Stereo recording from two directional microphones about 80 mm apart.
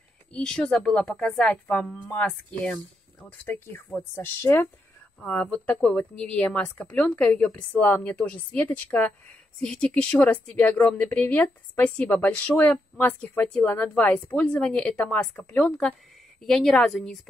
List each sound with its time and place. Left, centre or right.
0.3 s a woman's voice: centre; by 4.6 s left
5.2 s a woman's voice: centre
15.8 s a woman's voice: centre